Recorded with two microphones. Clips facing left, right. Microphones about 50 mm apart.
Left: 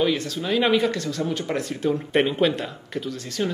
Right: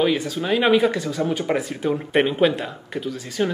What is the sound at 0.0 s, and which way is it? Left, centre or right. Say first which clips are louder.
Speech: right 2 dB; centre.